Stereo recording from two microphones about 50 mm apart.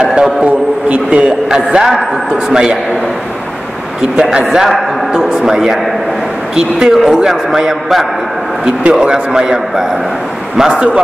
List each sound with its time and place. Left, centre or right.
0.0 s a man's voice: right
4.2 s a man's voice: right
4.5 s a man's voice: centre
6.9 s a man's voice: centre
8.8 s a man's voice: centre